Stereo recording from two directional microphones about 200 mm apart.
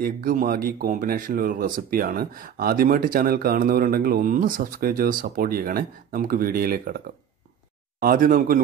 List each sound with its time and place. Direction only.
0.0 s speech: 40° right (ahead or behind)
8.0 s speech: 45° right (ahead or behind)